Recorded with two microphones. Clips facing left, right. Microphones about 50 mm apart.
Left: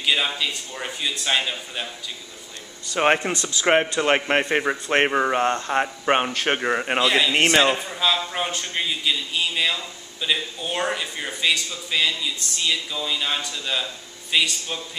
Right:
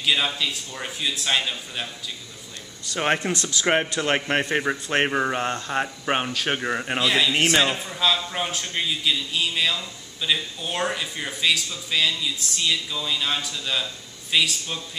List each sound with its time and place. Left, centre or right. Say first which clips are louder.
0.0 s a man's voice: left 1 dB; centre
3.0 s a man's voice: left 3 dB; centre